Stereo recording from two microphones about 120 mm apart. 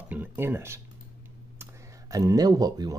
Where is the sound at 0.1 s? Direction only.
15° right (ahead or behind).